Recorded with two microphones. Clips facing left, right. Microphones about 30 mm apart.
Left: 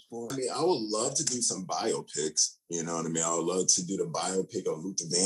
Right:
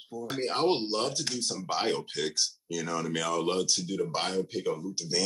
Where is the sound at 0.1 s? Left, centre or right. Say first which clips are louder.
Right 2 dB; right.